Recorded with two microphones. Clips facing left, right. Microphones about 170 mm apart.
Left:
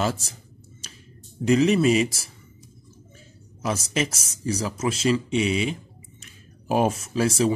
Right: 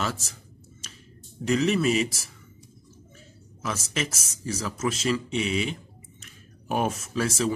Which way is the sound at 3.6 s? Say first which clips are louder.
Left 5 dB; 35° left (ahead or behind).